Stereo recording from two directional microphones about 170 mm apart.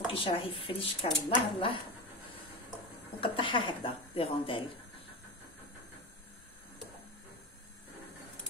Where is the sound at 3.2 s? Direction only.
30° left (ahead or behind).